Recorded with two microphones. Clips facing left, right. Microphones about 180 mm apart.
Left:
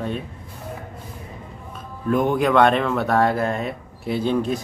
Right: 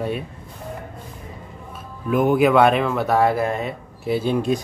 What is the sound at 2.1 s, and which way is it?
Speech, 5° right (ahead or behind).